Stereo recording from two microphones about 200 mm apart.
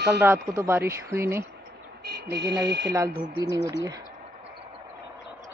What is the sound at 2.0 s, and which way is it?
Speech, 55° right (ahead or behind).